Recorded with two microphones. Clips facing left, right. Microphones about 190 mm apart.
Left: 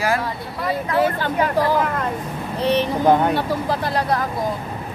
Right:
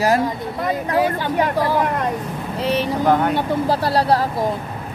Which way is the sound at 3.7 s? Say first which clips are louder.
Right 5 dB; 35° right (ahead or behind).